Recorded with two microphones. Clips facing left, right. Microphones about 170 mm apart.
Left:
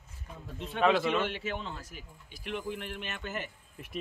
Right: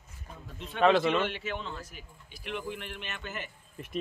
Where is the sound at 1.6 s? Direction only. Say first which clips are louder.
Right 1 dB; 20° left (ahead or behind).